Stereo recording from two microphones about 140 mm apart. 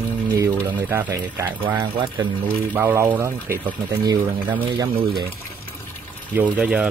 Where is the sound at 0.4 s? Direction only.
20° right (ahead or behind).